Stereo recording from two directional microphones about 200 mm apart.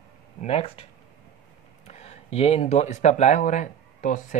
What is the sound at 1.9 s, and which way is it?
Speech, 30° left (ahead or behind).